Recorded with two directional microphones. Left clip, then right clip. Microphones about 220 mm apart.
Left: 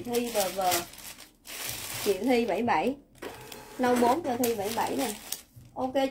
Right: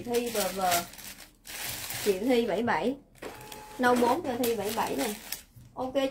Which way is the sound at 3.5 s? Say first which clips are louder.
Right 1 dB; 20° right (ahead or behind).